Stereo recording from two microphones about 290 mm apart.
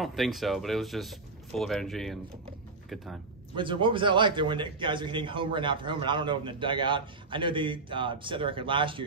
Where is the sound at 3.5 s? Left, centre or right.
Centre.